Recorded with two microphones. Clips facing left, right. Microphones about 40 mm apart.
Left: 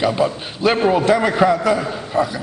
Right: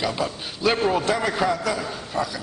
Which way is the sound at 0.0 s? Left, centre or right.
Centre.